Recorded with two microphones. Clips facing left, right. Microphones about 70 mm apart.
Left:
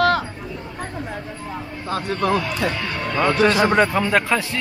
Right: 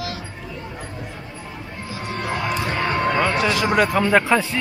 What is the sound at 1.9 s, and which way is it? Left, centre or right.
Speech, left.